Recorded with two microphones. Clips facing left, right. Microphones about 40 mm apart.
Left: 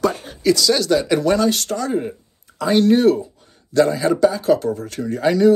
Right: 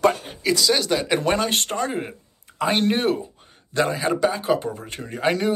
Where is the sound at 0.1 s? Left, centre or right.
Centre.